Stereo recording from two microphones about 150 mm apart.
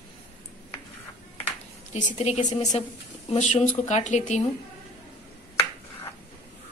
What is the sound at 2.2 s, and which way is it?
Speech, 45° left (ahead or behind).